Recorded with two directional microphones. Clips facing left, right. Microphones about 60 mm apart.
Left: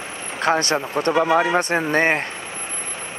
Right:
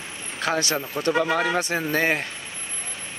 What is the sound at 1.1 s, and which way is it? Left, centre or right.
Speech, left.